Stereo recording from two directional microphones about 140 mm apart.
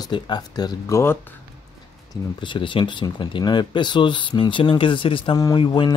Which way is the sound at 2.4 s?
35° left (ahead or behind).